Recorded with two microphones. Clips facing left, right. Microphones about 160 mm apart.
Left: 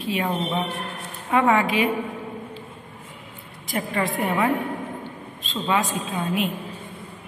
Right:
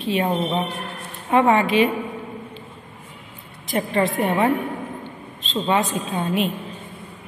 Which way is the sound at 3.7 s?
25° right (ahead or behind).